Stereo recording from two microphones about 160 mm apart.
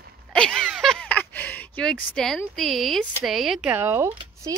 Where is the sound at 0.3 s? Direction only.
5° left (ahead or behind).